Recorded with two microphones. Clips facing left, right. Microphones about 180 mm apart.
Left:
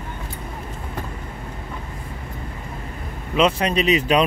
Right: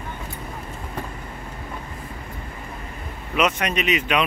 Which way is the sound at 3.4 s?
30° left (ahead or behind).